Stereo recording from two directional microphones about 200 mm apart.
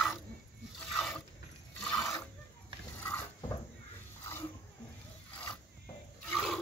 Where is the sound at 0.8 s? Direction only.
Centre (ahead or behind).